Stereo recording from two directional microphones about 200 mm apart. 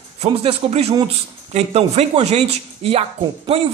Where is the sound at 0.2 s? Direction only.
30° right (ahead or behind).